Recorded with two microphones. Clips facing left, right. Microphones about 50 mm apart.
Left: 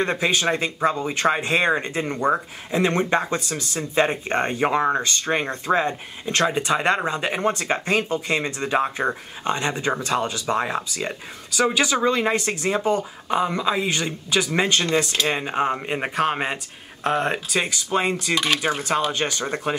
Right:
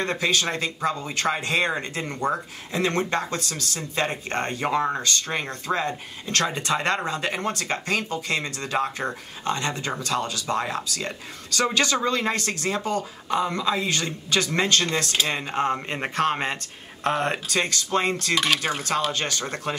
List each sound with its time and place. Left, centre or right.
0.0 s speech: centre